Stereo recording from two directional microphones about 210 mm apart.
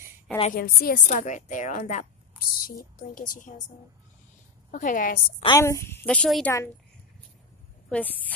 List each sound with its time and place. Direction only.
0.4 s a woman's voice: 45° left (ahead or behind)
4.6 s a woman's voice: 35° left (ahead or behind)
5.4 s a woman's voice: 15° left (ahead or behind)